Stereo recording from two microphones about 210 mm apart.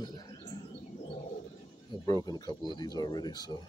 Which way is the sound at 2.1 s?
20° left (ahead or behind).